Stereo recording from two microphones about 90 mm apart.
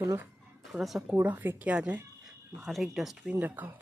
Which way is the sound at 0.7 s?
Centre (ahead or behind).